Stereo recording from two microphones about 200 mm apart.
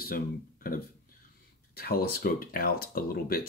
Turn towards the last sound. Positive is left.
turn(degrees=45)  # may be behind; listen again after turning